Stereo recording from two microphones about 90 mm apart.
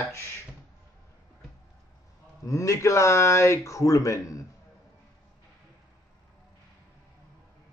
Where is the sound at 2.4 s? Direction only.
35° left (ahead or behind).